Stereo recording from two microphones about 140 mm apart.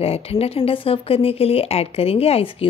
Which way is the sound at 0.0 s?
45° left (ahead or behind).